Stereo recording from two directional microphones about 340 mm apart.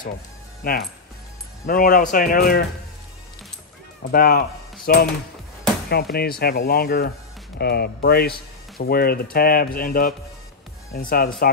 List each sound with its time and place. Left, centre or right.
0.6 s speech: left
4.1 s speech: left
6.1 s speech: left